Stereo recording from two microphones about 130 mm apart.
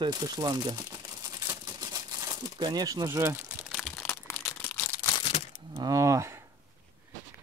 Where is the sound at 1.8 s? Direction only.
30° right (ahead or behind).